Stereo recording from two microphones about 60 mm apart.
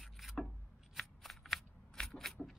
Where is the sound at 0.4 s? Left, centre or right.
Centre.